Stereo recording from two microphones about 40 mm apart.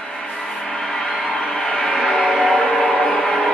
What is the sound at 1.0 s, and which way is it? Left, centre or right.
Music, centre.